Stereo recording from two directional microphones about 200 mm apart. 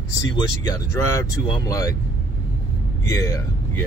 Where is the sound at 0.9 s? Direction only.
15° left (ahead or behind).